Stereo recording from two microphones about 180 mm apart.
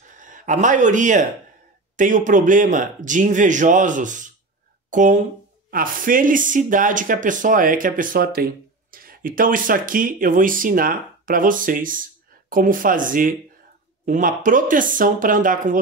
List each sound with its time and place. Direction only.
0.2 s speech: 45° right (ahead or behind)